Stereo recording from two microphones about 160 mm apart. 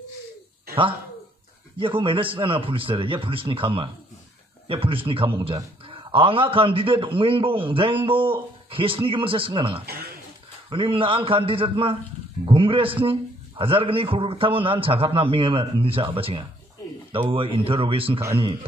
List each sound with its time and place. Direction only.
1.8 s a man's voice: 30° right (ahead or behind)